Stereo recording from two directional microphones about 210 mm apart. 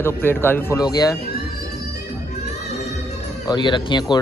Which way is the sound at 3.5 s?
20° left (ahead or behind).